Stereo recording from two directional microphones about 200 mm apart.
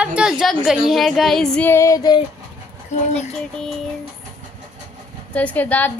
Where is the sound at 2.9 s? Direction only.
35° left (ahead or behind).